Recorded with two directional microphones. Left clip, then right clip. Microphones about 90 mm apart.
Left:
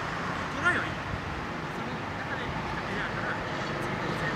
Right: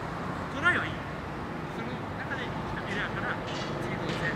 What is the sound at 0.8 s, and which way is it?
Vehicle, 35° left (ahead or behind).